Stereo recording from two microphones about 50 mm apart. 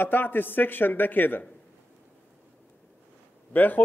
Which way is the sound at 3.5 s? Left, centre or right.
Left.